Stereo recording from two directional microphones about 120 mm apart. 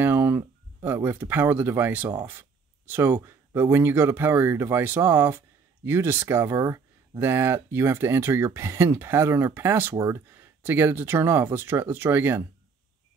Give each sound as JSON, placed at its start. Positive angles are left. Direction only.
{"t": 0.0, "sound": "speech", "side_deg": -20}